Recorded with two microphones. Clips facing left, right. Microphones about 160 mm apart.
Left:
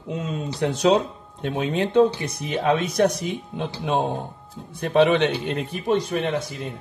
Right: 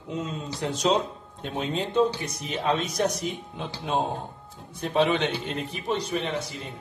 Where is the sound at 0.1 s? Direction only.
65° left (ahead or behind).